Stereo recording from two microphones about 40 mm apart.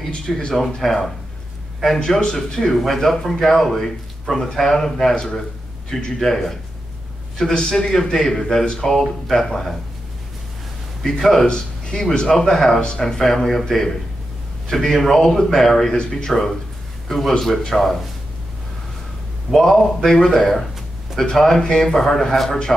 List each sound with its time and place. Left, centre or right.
0.1 s speech: left
0.6 s speech: centre
2.0 s a man's voice: centre
6.1 s a man's voice: centre
11.1 s a man's voice: centre
11.4 s a man's voice: left
19.5 s a man's voice: centre